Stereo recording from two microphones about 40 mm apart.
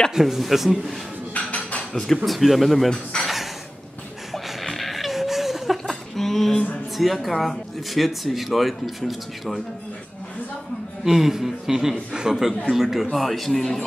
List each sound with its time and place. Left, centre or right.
0.1 s speech: centre
1.3 s a sound: left
2.2 s speech: centre
2.9 s speech: left
4.3 s a sound: centre
6.5 s speech: left
7.0 s speech: centre
11.1 s a man's voice: centre
12.6 s speech: centre